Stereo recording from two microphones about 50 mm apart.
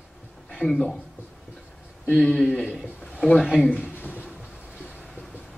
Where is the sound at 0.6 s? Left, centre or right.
Left.